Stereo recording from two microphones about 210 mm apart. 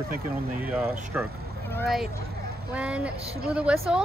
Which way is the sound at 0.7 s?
5° right (ahead or behind).